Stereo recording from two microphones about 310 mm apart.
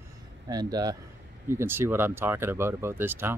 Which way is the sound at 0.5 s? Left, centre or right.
Centre.